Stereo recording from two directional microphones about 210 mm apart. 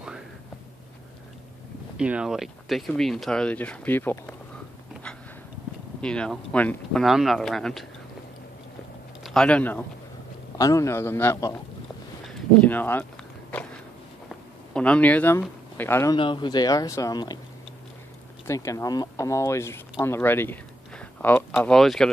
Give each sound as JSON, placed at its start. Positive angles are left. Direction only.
{"t": 2.0, "sound": "speech", "side_deg": -5}
{"t": 5.9, "sound": "speech", "side_deg": 5}
{"t": 9.2, "sound": "a man's voice", "side_deg": 5}
{"t": 13.5, "sound": "a sound", "side_deg": 5}
{"t": 15.8, "sound": "a man's voice", "side_deg": 10}
{"t": 16.2, "sound": "speech", "side_deg": 25}
{"t": 18.5, "sound": "speech", "side_deg": 15}